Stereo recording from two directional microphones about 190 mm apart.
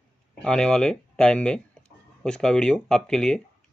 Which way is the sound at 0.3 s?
5° left (ahead or behind).